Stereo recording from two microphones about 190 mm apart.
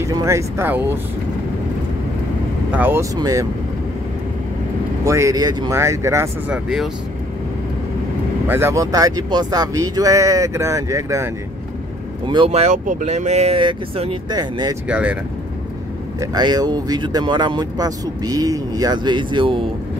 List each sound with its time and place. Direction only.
0.0 s speech: 15° right (ahead or behind)
2.7 s speech: 10° right (ahead or behind)
5.0 s speech: 15° right (ahead or behind)
8.5 s speech: 10° right (ahead or behind)
12.3 s speech: 30° right (ahead or behind)
14.9 s speech: 5° right (ahead or behind)
16.2 s speech: 20° right (ahead or behind)